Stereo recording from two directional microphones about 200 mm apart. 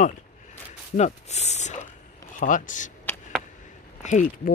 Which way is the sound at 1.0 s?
35° left (ahead or behind).